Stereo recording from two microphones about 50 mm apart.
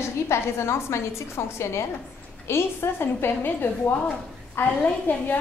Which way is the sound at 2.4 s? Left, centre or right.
Left.